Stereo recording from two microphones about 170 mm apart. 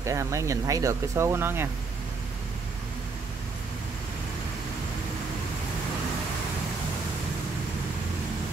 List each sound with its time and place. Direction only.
0.0 s speech: 15° right (ahead or behind)